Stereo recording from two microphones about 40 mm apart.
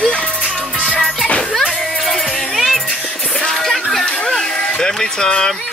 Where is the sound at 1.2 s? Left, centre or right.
Left.